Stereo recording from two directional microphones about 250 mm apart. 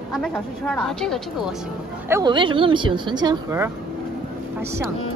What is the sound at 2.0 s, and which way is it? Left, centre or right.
Speech, centre.